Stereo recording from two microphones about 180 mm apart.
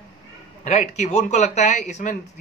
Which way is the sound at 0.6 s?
40° left (ahead or behind).